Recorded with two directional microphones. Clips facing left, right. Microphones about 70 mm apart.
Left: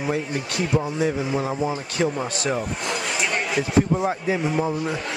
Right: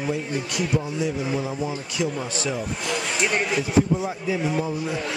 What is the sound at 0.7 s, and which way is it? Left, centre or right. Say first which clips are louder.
A man's voice: left 4 dB; left.